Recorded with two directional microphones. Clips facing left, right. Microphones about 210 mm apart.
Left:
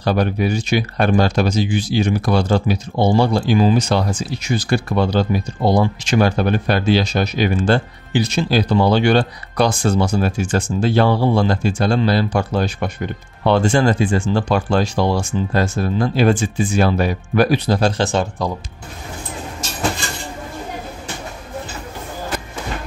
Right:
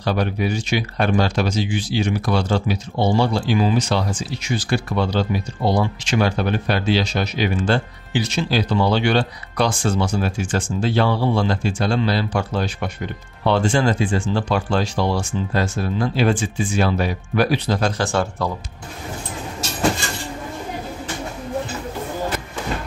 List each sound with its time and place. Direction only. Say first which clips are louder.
0.0 s speech: left 3 dB; 45° left (ahead or behind)
17.7 s speech: left 3 dB; 30° left (ahead or behind)